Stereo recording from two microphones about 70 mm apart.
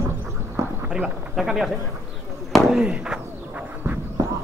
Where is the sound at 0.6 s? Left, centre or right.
Centre.